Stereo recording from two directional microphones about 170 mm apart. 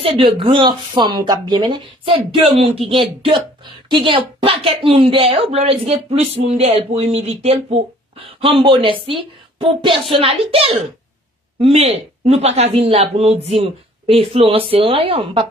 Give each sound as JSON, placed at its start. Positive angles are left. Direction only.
{"t": 0.0, "sound": "speech", "side_deg": -35}